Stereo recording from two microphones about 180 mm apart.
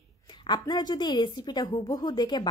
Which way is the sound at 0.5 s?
25° left (ahead or behind).